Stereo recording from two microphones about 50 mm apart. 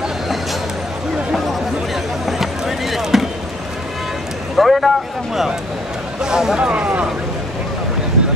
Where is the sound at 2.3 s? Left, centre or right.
Centre.